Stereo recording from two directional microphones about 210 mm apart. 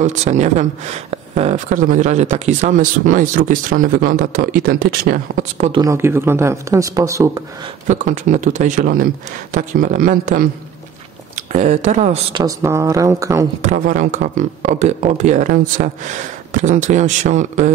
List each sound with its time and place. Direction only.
0.0 s speech: 35° right (ahead or behind)
5.8 s speech: 15° right (ahead or behind)
7.9 s speech: 35° right (ahead or behind); by 13.5 s 15° right (ahead or behind)
13.6 s speech: 35° right (ahead or behind)